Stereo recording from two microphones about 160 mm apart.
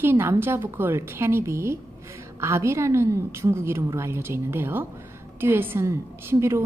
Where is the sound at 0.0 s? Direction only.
15° right (ahead or behind).